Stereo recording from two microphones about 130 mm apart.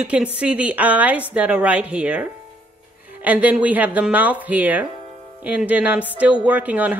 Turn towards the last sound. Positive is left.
turn(degrees=-10)  # may be behind; listen again after turning